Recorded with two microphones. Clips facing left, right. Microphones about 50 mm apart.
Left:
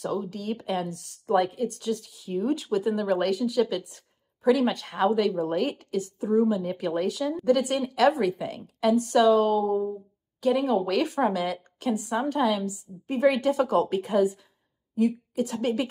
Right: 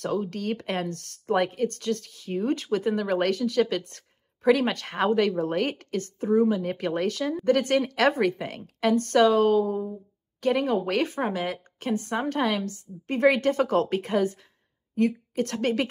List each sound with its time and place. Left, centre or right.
0.0 s speech: right
11.9 s a woman's voice: right